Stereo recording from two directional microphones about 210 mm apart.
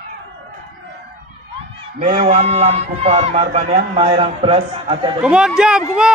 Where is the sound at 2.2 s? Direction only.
30° right (ahead or behind).